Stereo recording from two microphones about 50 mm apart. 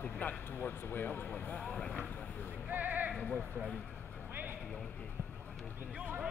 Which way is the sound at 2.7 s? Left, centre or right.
Right.